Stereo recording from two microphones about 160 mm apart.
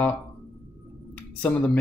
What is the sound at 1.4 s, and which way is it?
Speech, 10° left (ahead or behind).